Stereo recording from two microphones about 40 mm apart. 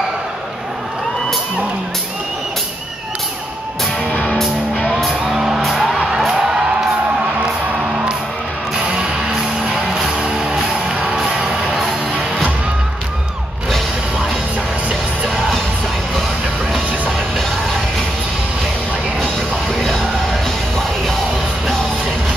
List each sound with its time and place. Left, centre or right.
4.1 s music: left
4.9 s music: centre
5.3 s music: centre
6.1 s music: centre
8.8 s music: right
19.7 s music: centre